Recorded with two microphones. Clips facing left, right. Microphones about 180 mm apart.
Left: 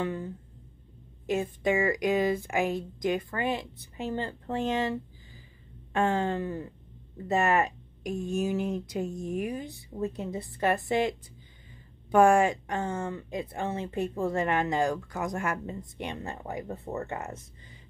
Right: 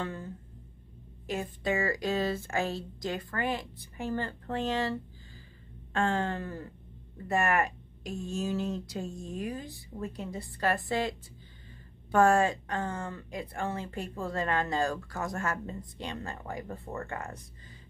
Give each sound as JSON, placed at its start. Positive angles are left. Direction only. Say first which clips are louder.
{"t": 0.0, "sound": "a woman's voice", "louder": "left 5 dB", "side_deg": 15}